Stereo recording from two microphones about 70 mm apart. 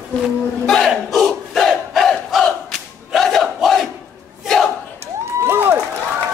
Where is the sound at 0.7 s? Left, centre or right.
Centre.